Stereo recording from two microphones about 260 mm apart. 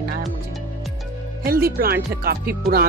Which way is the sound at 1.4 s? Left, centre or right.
Right.